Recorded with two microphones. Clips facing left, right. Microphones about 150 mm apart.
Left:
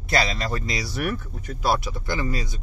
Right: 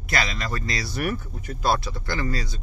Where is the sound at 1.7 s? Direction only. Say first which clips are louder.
Even; 15° left (ahead or behind).